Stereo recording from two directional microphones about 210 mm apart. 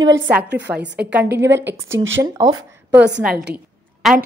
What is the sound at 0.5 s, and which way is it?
Speech, 55° right (ahead or behind).